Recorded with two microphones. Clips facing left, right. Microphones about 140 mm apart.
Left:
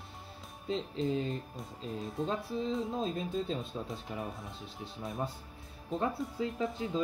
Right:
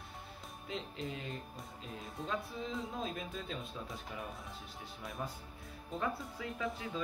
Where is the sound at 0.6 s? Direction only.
30° left (ahead or behind).